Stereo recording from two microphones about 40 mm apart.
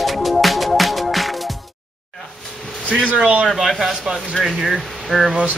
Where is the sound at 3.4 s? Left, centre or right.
Centre.